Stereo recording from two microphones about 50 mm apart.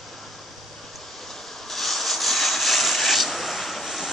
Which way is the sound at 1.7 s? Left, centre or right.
Centre.